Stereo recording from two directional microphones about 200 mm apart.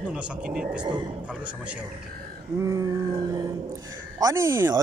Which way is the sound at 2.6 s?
15° right (ahead or behind).